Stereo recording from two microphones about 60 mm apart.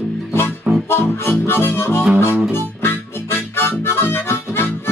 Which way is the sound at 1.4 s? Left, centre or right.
Left.